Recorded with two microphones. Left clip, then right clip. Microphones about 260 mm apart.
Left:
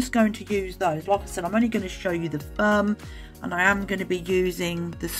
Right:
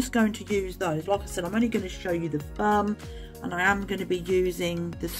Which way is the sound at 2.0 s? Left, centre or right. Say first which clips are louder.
Left 2 dB; centre.